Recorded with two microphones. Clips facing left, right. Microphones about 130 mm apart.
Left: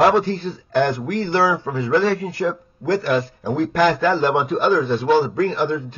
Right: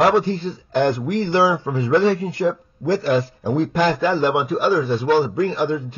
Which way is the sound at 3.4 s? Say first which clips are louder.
Left 2 dB; 20° right (ahead or behind).